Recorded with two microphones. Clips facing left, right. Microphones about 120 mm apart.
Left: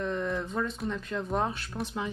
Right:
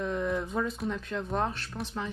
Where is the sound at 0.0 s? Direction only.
5° right (ahead or behind).